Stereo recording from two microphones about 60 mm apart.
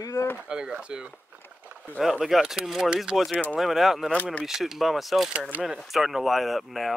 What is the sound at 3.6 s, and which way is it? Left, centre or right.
Speech, centre.